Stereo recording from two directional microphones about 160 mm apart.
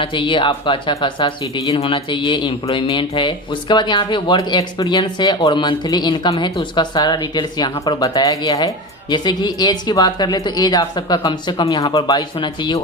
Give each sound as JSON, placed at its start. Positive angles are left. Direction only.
{"t": 0.0, "sound": "speech", "side_deg": 30}